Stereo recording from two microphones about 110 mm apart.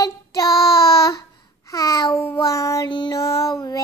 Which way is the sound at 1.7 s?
30° left (ahead or behind).